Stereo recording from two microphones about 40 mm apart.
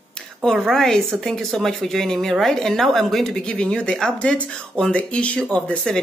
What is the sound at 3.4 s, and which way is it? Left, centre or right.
Speech, left.